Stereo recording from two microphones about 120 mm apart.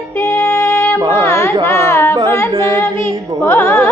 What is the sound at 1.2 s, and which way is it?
Carnatic music, 20° left (ahead or behind).